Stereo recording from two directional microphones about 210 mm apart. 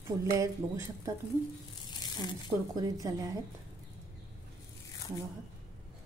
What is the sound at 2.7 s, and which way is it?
Speech, 15° right (ahead or behind).